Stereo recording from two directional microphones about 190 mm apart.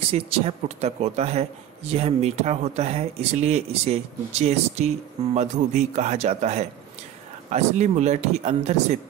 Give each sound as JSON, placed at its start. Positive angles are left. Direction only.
{"t": 0.1, "sound": "speech", "side_deg": -35}